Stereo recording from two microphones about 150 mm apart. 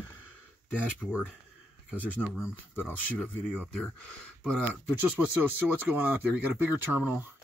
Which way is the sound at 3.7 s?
Centre (ahead or behind).